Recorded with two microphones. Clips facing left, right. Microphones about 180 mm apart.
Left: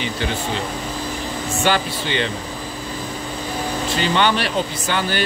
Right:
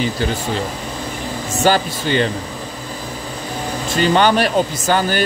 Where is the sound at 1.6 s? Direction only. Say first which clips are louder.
Right 5 dB; 40° right (ahead or behind).